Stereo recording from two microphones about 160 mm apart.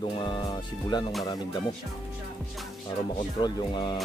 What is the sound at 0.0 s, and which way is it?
Speech, 30° left (ahead or behind).